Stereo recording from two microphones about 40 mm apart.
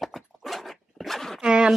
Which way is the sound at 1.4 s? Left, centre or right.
Right.